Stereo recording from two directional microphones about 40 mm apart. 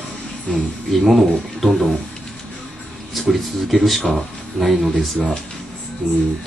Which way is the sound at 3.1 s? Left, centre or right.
Centre.